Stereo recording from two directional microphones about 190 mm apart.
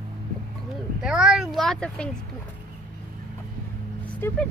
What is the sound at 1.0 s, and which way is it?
Speech, 5° right (ahead or behind).